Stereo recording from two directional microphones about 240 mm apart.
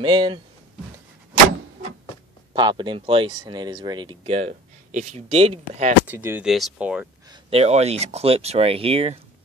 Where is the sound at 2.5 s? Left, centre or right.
Centre.